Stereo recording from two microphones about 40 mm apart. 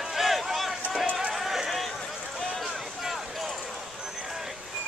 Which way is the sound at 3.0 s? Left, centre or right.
Centre.